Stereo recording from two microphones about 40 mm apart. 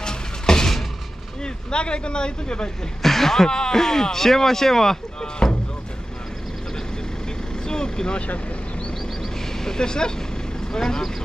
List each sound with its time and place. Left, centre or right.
0.0 s a sound: centre
1.4 s speech: left
3.0 s speech: centre
7.6 s vehicle: centre
9.2 s vehicle: centre
10.7 s speech: centre